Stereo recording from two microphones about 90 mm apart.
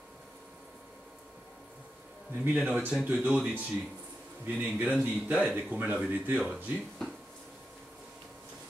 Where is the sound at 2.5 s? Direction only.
15° right (ahead or behind).